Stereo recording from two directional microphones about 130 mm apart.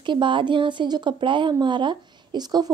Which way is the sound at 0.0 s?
40° right (ahead or behind).